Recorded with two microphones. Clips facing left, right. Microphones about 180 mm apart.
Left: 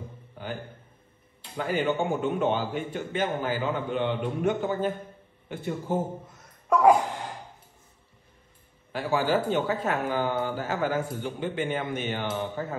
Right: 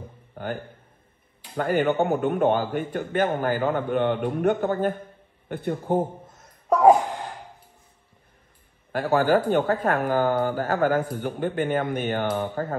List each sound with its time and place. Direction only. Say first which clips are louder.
0.3 s a sound: right 5 dB; 50° right (ahead or behind)
1.5 s a man's voice: right 4 dB; 50° right (ahead or behind)
8.9 s a man's voice: right 5 dB; 50° right (ahead or behind)